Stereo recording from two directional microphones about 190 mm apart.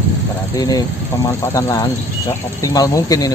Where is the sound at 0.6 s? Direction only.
20° left (ahead or behind).